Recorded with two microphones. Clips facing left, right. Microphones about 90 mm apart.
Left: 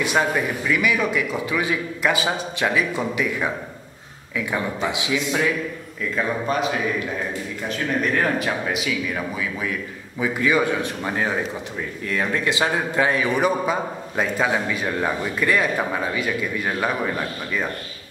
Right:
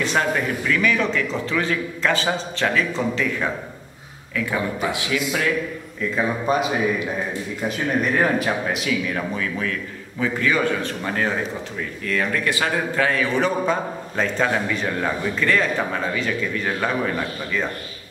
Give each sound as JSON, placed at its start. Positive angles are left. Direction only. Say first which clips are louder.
{"t": 0.0, "sound": "a man's voice", "louder": "even", "side_deg": 10}
{"t": 4.8, "sound": "a man's voice", "louder": "even", "side_deg": 20}
{"t": 6.1, "sound": "a man's voice", "louder": "right 2 dB", "side_deg": -15}
{"t": 8.0, "sound": "a man's voice", "louder": "right 2 dB", "side_deg": -5}